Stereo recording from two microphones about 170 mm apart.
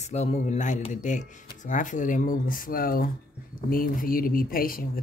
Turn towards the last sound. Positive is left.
turn(degrees=55)  # may be behind; listen again after turning